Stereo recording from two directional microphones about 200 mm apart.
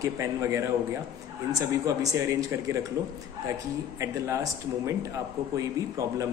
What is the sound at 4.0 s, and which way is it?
Speech, 15° right (ahead or behind).